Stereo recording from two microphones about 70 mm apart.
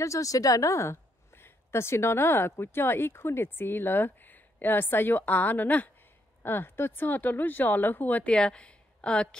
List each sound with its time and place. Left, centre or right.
0.0 s a woman's voice: left; by 9.4 s centre